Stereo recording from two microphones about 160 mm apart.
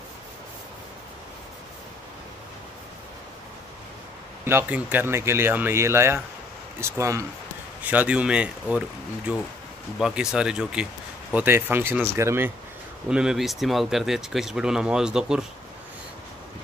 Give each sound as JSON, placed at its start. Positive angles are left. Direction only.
{"t": 4.5, "sound": "speech", "side_deg": -10}
{"t": 13.1, "sound": "speech", "side_deg": -5}